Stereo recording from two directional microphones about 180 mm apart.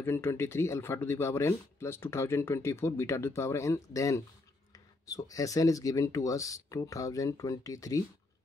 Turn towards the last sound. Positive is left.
turn(degrees=20)  # may be behind; listen again after turning